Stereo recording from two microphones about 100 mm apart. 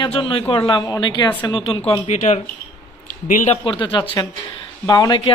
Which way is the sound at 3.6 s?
55° left (ahead or behind).